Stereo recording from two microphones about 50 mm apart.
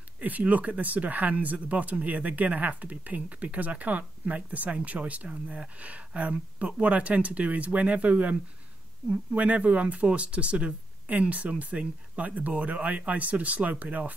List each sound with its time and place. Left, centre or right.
0.2 s speech: right